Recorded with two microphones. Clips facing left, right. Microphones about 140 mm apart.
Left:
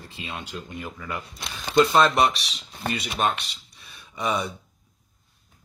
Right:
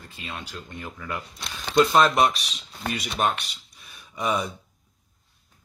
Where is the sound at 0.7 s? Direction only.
5° left (ahead or behind).